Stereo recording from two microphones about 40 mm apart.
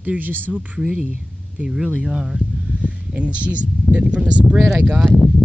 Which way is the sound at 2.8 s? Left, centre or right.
Right.